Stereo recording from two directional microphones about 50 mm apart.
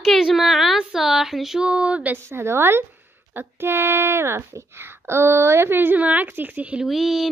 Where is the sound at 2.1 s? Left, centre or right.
Right.